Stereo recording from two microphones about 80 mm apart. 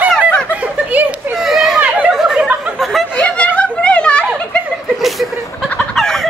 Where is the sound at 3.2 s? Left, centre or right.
Centre.